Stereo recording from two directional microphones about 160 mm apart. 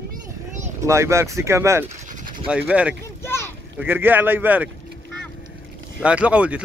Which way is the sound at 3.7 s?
10° right (ahead or behind).